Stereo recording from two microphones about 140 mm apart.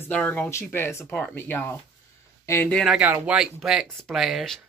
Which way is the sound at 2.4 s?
20° left (ahead or behind).